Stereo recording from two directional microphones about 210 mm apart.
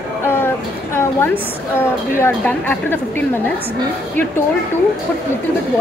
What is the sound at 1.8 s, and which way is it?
Speech, 10° left (ahead or behind).